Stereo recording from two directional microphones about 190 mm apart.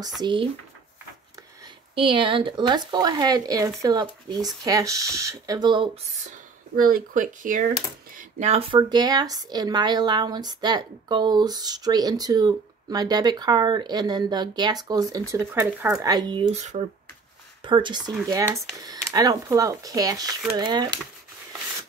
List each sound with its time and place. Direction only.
0.2 s a woman's voice: 25° right (ahead or behind)
2.0 s a woman's voice: 25° right (ahead or behind)
6.9 s a woman's voice: 45° right (ahead or behind); by 16.6 s 25° right (ahead or behind)
17.6 s a woman's voice: 25° right (ahead or behind)